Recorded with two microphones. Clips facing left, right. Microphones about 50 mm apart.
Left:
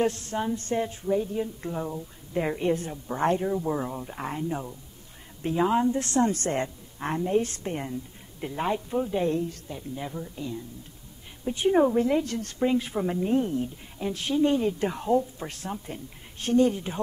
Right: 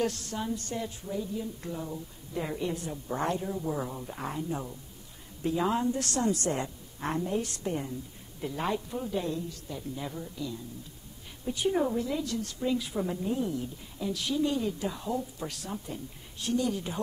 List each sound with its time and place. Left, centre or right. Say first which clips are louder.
0.0 s a woman's voice: left 5 dB; left
1.6 s a woman's voice: left 5 dB; left
4.2 s a woman's voice: left 3 dB; left
5.6 s speech: left 6 dB; left
6.3 s a woman's voice: left 3 dB; left
8.4 s speech: left 3 dB; left
9.2 s speech: left 7 dB; left
9.7 s a woman's voice: left 2 dB; left
15.1 s a woman's voice: left 8 dB; left